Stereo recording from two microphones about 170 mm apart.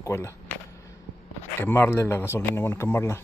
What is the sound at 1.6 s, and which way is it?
Speech, 15° left (ahead or behind).